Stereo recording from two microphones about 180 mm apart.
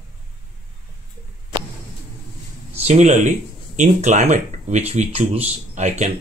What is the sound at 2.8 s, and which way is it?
Speech, 40° right (ahead or behind).